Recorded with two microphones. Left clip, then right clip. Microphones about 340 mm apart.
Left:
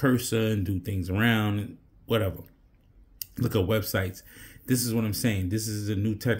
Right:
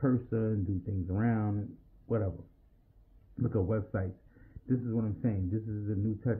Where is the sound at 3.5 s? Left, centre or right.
Centre.